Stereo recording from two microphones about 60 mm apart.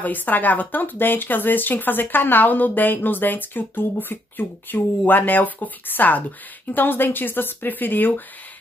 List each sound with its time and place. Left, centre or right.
0.0 s speech: left